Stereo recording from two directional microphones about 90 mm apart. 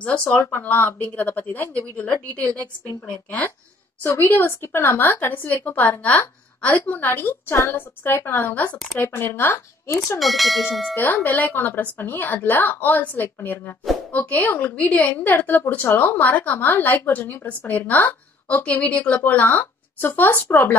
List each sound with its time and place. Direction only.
0.0 s a woman's voice: 15° left (ahead or behind)
10.1 s speech: centre (ahead or behind)
11.2 s a woman's voice: 20° left (ahead or behind)